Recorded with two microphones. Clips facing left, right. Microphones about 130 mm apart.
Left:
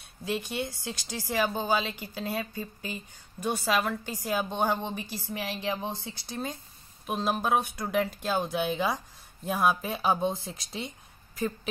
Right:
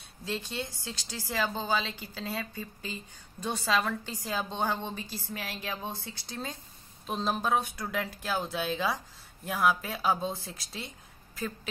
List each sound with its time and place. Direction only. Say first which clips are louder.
0.2 s a woman's voice: left 4 dB; 15° left (ahead or behind)